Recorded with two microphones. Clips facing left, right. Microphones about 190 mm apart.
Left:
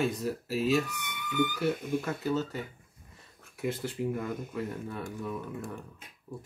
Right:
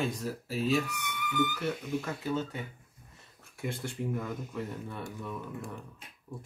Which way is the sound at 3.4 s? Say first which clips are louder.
Left 4 dB; centre (ahead or behind).